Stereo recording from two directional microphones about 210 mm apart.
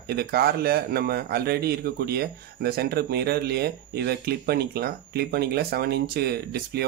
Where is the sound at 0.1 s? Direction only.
50° right (ahead or behind).